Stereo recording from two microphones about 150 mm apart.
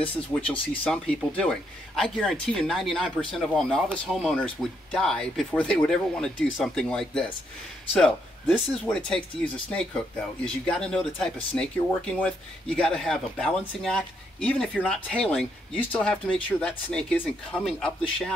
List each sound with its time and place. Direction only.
0.3 s a man's voice: 10° left (ahead or behind)